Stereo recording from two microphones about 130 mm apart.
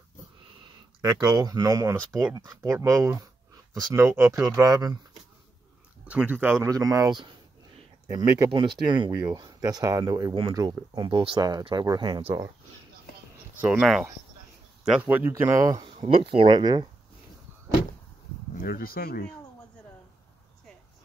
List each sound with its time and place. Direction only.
1.0 s speech: 30° right (ahead or behind)
6.0 s speech: 10° right (ahead or behind)
8.5 s speech: 40° right (ahead or behind)
13.6 s speech: 10° right (ahead or behind)
14.9 s speech: 10° right (ahead or behind)
15.8 s speech: 40° right (ahead or behind)
19.0 s speech: 90° left